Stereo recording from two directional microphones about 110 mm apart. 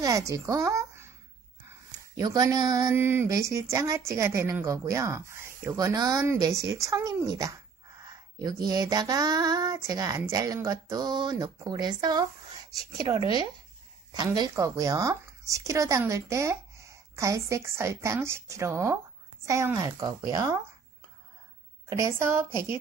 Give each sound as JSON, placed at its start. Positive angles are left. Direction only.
{"t": 0.0, "sound": "a woman's voice", "side_deg": -30}
{"t": 1.9, "sound": "speech", "side_deg": -35}
{"t": 3.0, "sound": "speech", "side_deg": -20}
{"t": 14.1, "sound": "speech", "side_deg": -40}
{"t": 21.9, "sound": "speech", "side_deg": -25}